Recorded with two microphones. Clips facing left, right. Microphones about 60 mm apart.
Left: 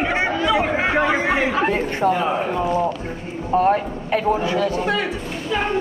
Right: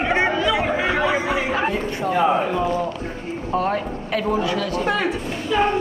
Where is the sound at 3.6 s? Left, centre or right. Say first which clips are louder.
Left 5 dB; left.